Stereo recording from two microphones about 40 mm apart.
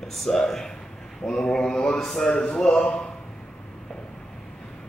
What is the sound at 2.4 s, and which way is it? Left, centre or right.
Speech, left.